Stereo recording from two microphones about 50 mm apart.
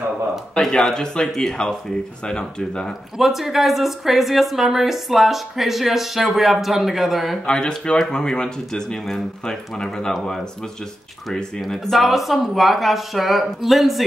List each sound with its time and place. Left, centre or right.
0.6 s speech: centre
3.2 s a woman's voice: centre
7.4 s speech: centre
11.6 s a woman's voice: centre